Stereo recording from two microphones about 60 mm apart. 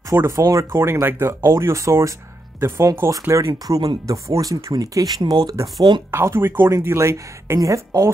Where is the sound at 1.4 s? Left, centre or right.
Right.